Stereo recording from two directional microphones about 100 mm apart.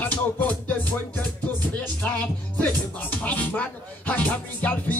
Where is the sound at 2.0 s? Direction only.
15° left (ahead or behind).